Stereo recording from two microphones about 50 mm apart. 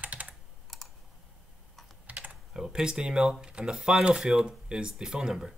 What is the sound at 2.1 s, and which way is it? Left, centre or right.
Typing, right.